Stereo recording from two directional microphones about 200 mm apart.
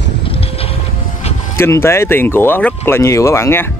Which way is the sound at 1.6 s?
15° left (ahead or behind).